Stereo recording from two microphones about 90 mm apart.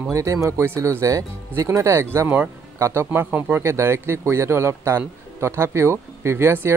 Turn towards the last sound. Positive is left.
turn(degrees=-25)  # may be behind; listen again after turning